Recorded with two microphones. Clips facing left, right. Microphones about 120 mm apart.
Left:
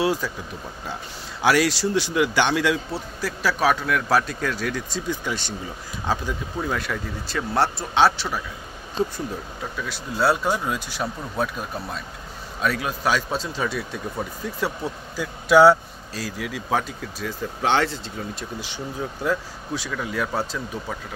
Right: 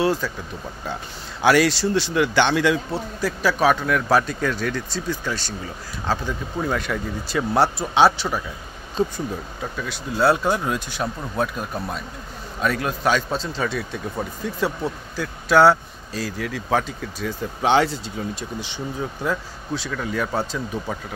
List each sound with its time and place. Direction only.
0.0 s speech: 10° left (ahead or behind)
1.4 s speech: 5° left (ahead or behind)
4.9 s speech: 15° left (ahead or behind)
6.6 s speech: centre (ahead or behind)